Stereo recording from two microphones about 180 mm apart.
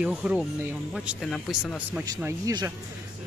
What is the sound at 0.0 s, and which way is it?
Speech, 5° right (ahead or behind).